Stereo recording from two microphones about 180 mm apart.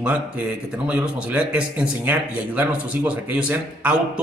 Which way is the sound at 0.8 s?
5° right (ahead or behind).